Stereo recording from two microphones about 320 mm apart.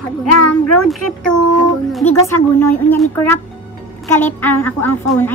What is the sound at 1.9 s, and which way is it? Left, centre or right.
A woman's voice, centre.